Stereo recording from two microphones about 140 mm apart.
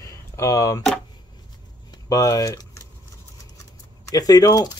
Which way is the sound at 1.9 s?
25° left (ahead or behind).